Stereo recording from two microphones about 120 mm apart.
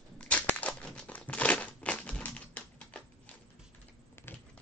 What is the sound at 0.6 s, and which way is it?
Crumpling, 10° left (ahead or behind).